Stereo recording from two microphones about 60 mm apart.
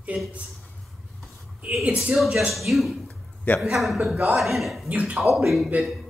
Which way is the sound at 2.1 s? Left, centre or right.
Centre.